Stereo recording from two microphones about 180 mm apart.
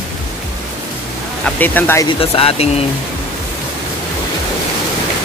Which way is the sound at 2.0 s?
30° left (ahead or behind).